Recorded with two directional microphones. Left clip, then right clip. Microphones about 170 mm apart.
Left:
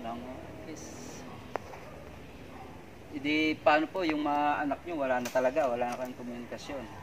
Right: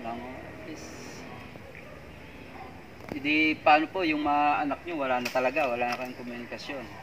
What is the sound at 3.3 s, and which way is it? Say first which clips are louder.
Speech: right 4 dB; 20° left (ahead or behind).